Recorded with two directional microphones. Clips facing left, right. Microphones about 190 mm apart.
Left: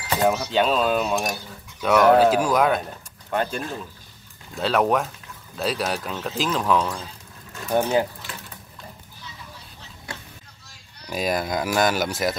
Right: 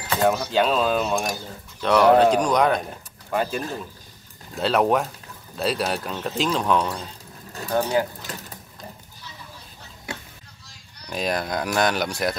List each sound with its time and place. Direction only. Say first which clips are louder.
0.2 s speech: right 1 dB; centre (ahead or behind)
7.7 s speech: left 1 dB; 20° left (ahead or behind)
8.2 s sewing machine: right 2 dB; 40° right (ahead or behind)
11.1 s speech: left 1 dB; 5° left (ahead or behind)